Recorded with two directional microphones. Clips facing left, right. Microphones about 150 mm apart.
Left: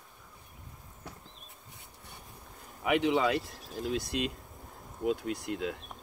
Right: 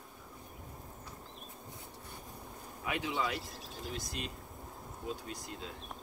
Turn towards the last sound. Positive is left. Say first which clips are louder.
# left 10 dB
turn(degrees=70)  # may be behind; listen again after turning